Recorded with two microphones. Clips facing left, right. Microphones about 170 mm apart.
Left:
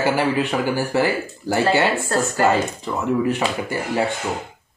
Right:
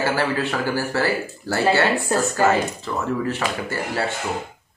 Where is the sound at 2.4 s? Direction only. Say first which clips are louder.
Left 2 dB; 15° left (ahead or behind).